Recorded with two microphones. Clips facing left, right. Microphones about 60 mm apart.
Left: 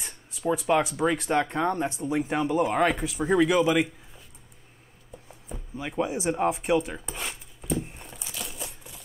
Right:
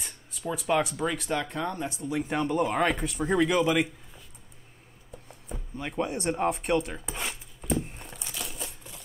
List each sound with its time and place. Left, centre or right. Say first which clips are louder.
0.0 s a sound: left 3 dB; centre
0.6 s speech: left 1 dB; centre
1.3 s speech: left 5 dB; left
2.1 s speech: left 2 dB; centre
5.3 s music: left 1 dB; centre
7.8 s a sound: even; centre
8.5 s crumpling: left 1 dB; centre